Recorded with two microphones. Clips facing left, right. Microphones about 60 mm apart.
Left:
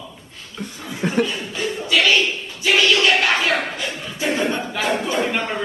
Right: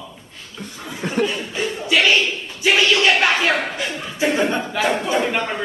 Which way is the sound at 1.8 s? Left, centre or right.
Centre.